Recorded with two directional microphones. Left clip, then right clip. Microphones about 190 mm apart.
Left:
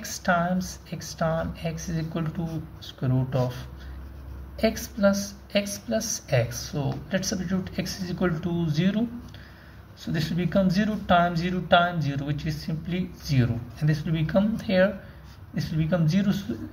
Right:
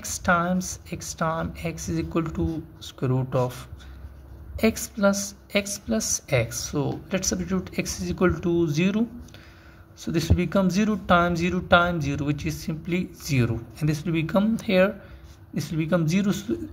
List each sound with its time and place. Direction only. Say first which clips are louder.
0.0 s speech: right 2 dB; 35° right (ahead or behind)
4.6 s speech: right 1 dB; 35° right (ahead or behind)
10.0 s speech: right 4 dB; 40° right (ahead or behind)